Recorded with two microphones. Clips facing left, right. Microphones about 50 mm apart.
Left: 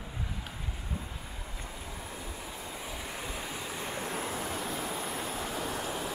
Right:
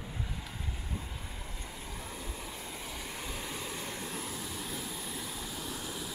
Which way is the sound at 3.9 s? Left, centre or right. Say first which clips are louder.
Left 5 dB; left.